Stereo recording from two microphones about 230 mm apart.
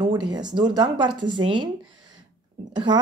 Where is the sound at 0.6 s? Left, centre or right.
Centre.